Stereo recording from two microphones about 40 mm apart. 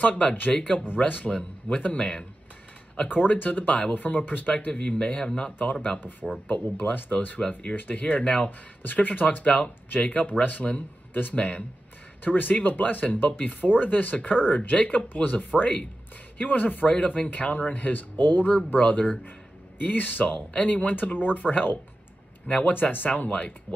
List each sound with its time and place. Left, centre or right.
0.0 s speech: left
3.1 s speech: left
7.2 s speech: left
9.4 s speech: left
9.9 s speech: left
18.7 s speech: left
20.9 s speech: left
22.7 s speech: left